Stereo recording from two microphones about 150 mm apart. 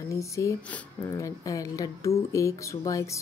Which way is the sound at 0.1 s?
20° left (ahead or behind).